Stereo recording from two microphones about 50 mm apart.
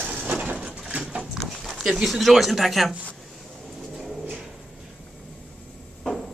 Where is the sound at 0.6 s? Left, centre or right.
Centre.